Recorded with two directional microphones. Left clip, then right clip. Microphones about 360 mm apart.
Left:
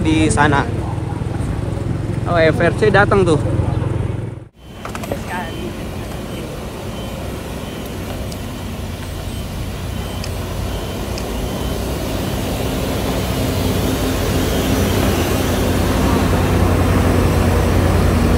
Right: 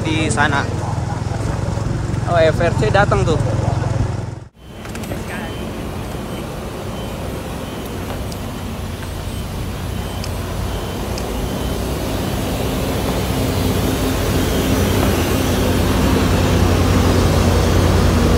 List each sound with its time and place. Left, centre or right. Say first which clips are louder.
0.0 s vehicle: left 3 dB; centre
2.3 s speech: even; centre
11.5 s vehicle: even; centre